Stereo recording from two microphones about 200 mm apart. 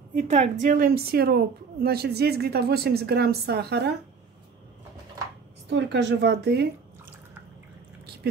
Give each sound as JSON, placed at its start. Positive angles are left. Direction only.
{"t": 0.3, "sound": "a woman's voice", "side_deg": -35}
{"t": 5.7, "sound": "speech", "side_deg": -60}